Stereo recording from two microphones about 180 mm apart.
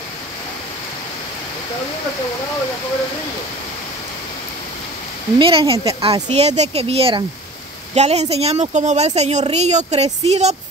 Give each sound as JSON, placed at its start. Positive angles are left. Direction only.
{"t": 5.4, "sound": "speech", "side_deg": -30}